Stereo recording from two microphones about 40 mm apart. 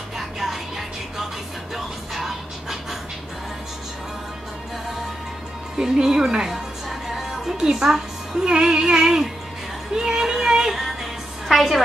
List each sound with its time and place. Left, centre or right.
0.4 s music: centre
2.1 s pant: centre
5.8 s speech: centre
6.5 s music: centre
9.9 s speech: centre
11.4 s a woman's voice: centre